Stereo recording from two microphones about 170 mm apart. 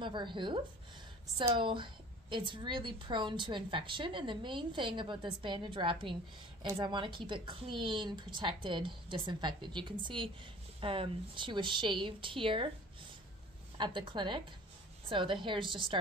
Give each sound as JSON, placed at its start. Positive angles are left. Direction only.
{"t": 0.0, "sound": "a woman's voice", "side_deg": -30}
{"t": 13.7, "sound": "a woman's voice", "side_deg": -30}